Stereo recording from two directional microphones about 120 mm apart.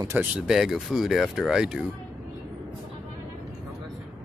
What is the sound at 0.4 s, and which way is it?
Speech, 5° right (ahead or behind).